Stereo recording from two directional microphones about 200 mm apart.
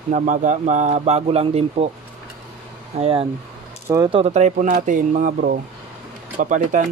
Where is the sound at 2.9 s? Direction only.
30° right (ahead or behind).